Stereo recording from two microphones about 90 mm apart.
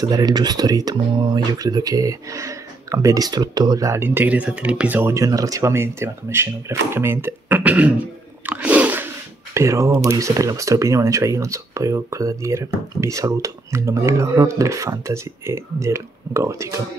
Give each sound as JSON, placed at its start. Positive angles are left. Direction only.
{"t": 0.0, "sound": "speech", "side_deg": -50}
{"t": 3.9, "sound": "speech", "side_deg": -25}
{"t": 5.1, "sound": "speech", "side_deg": -40}
{"t": 9.5, "sound": "speech", "side_deg": -35}